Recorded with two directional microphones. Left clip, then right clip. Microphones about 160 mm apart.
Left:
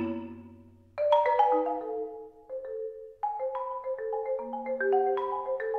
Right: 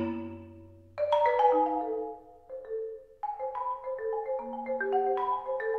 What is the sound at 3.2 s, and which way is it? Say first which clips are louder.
Marimba: left 3 dB; 30° left (ahead or behind).